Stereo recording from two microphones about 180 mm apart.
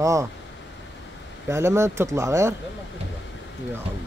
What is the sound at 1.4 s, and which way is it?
Speech, 15° right (ahead or behind).